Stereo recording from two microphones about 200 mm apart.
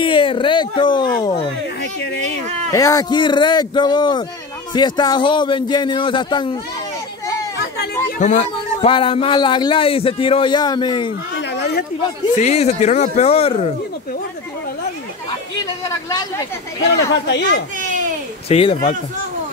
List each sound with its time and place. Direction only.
0.0 s speech: 25° left (ahead or behind)
2.7 s speech: 15° left (ahead or behind)
7.5 s chatter: 55° left (ahead or behind)
8.2 s speech: 35° left (ahead or behind)
11.3 s a sound: 60° left (ahead or behind)
12.4 s speech: 35° left (ahead or behind)
17.3 s speech: 60° left (ahead or behind)
18.5 s speech: 30° left (ahead or behind)